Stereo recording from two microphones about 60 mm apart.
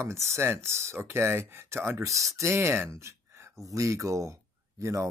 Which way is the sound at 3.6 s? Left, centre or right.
Right.